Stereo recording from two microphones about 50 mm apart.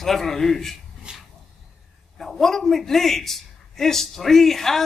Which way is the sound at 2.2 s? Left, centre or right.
Centre.